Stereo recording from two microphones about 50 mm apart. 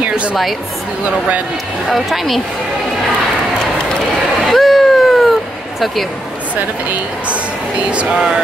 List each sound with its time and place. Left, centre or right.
0.1 s music: right
1.9 s speech: centre
4.5 s a sound: centre
6.5 s a woman's voice: right